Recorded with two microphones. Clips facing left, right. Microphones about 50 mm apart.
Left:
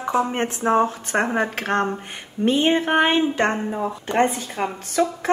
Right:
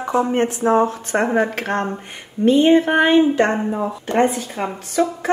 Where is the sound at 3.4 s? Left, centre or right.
Centre.